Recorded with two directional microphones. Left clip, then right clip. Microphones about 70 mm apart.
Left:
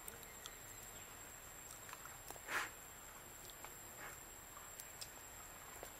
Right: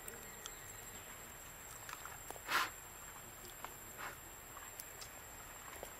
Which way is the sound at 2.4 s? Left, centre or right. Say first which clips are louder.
Right 6 dB; right.